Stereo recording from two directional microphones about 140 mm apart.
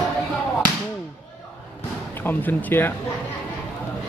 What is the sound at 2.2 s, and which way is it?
Speech, 15° left (ahead or behind).